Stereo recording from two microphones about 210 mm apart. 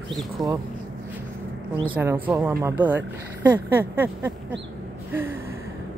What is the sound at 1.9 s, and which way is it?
Speech, 10° right (ahead or behind).